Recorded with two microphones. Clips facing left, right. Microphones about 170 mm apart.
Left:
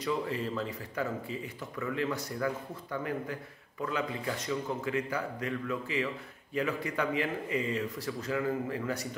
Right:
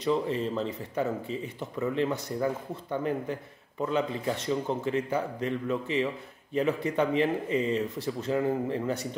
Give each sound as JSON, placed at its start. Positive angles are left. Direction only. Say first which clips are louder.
{"t": 0.0, "sound": "speech", "louder": "right 5 dB", "side_deg": -25}